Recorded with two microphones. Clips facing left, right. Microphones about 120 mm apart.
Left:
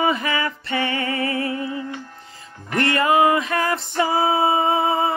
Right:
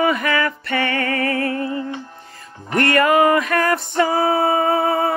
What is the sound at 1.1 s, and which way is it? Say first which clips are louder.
Music: right 3 dB; 55° right (ahead or behind).